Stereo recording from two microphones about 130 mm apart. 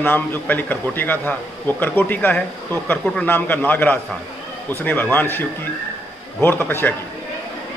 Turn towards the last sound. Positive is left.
turn(degrees=15)  # may be behind; listen again after turning